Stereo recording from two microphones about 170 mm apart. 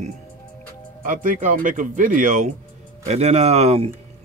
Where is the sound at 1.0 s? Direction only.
50° right (ahead or behind).